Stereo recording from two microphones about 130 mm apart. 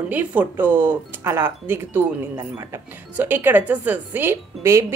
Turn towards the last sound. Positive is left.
turn(degrees=-20)  # may be behind; listen again after turning